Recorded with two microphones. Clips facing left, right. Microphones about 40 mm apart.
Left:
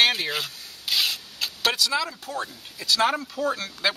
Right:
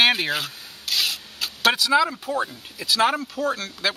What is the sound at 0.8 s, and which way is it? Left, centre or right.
Rub, centre.